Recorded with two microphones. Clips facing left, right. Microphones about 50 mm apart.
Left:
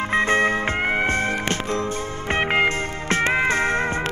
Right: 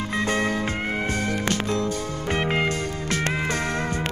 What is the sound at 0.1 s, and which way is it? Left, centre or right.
Music, left.